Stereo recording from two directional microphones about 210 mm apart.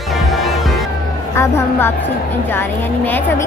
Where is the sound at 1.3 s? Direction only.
10° left (ahead or behind).